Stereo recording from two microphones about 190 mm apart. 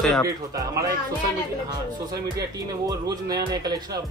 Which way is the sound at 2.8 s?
20° right (ahead or behind).